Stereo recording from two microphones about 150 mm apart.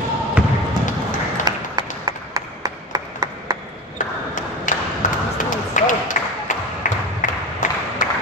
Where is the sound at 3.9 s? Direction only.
60° left (ahead or behind).